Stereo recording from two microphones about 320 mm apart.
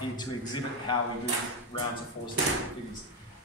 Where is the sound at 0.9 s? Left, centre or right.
Centre.